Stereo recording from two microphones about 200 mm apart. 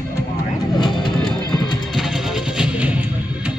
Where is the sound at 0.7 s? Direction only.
25° left (ahead or behind).